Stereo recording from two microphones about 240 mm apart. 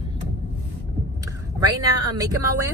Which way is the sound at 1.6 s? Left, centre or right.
Centre.